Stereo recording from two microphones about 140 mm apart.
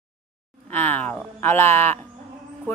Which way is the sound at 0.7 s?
10° left (ahead or behind).